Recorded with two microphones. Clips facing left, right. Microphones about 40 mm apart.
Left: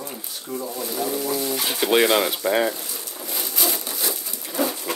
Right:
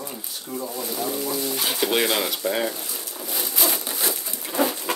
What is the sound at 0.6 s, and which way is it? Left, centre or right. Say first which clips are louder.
Speech: left 1 dB; centre.